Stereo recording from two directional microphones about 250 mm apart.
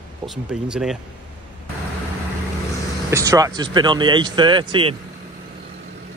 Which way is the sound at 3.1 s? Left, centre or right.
Centre.